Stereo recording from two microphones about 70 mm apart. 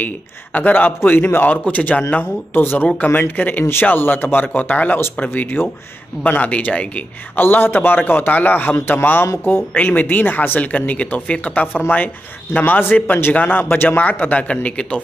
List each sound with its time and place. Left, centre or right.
0.0 s a man's voice: left